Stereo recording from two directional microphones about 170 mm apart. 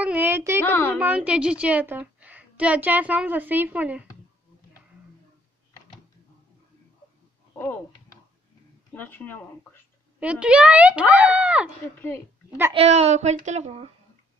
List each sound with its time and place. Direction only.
0.0 s a sound: 10° right (ahead or behind)
0.7 s a woman's voice: 10° left (ahead or behind)
0.9 s a woman's voice: 10° right (ahead or behind)
7.5 s speech: 15° left (ahead or behind)
8.9 s speech: 10° left (ahead or behind)
10.2 s a woman's voice: 5° right (ahead or behind)
12.7 s a woman's voice: 40° right (ahead or behind)